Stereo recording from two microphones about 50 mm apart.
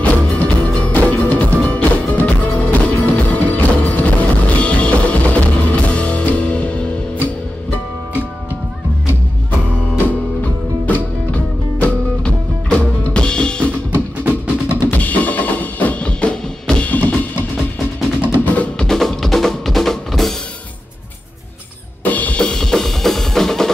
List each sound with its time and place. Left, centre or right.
0.0 s music: left
10.9 s music: left
14.9 s percussion: left
16.9 s percussion: left
17.6 s music: centre
18.3 s music: left
18.8 s drum: centre
22.0 s drum kit: left
22.4 s drum: centre